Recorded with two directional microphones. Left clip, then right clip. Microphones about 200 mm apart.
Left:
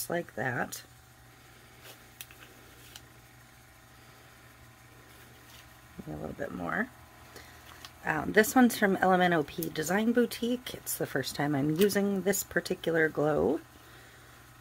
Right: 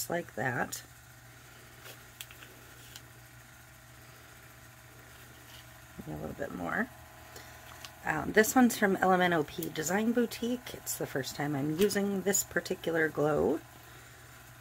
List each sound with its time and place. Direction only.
0.0 s speech: centre (ahead or behind)
6.2 s speech: 5° left (ahead or behind)